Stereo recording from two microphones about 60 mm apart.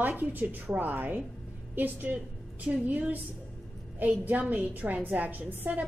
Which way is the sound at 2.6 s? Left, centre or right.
Centre.